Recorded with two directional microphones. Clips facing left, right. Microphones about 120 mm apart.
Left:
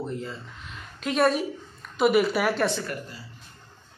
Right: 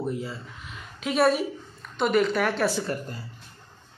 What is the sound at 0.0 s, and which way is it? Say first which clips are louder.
A woman's voice: right 2 dB; 5° right (ahead or behind).